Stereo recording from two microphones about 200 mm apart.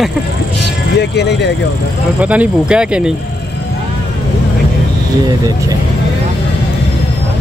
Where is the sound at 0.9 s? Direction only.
55° left (ahead or behind).